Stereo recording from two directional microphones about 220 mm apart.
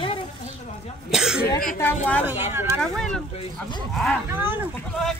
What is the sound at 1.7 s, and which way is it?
Speech, 10° left (ahead or behind).